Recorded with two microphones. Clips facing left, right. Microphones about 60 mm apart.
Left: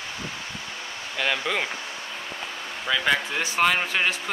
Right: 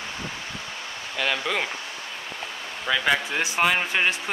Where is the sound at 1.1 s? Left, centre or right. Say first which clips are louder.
Even; centre.